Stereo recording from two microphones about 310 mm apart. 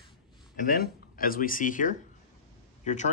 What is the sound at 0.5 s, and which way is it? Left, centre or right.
Speech, left.